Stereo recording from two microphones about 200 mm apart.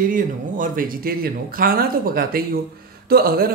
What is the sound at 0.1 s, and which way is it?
Speech, 45° right (ahead or behind).